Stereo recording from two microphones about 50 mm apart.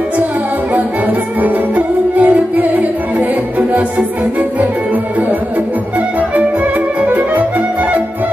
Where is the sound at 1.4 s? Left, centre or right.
Right.